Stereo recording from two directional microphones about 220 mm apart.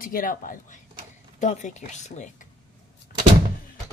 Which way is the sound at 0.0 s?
40° left (ahead or behind).